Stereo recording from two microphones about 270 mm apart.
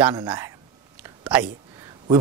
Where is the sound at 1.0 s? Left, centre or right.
Centre.